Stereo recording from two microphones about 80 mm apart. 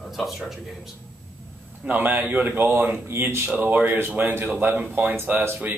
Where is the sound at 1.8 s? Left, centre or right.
Right.